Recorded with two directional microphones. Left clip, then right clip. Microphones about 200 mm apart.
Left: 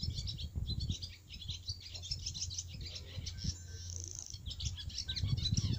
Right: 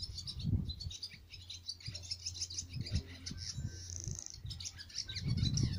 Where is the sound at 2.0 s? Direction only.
20° left (ahead or behind).